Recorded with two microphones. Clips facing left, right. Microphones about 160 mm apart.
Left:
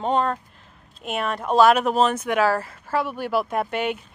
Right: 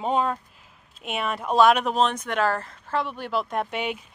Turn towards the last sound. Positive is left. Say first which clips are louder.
# left 3 dB
turn(degrees=0)  # may be behind; listen again after turning